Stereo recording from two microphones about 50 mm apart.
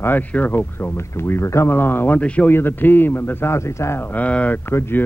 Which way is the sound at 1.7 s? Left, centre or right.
Left.